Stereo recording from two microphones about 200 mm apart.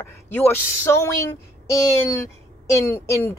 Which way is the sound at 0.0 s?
10° left (ahead or behind).